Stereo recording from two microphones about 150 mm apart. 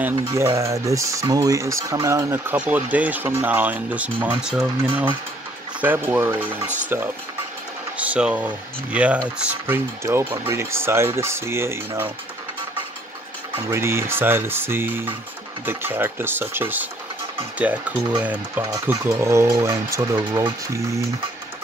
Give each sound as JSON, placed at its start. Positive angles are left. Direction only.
{"t": 0.0, "sound": "speech", "side_deg": -15}
{"t": 8.0, "sound": "speech", "side_deg": -10}
{"t": 13.7, "sound": "speech", "side_deg": -15}
{"t": 18.6, "sound": "speech", "side_deg": -25}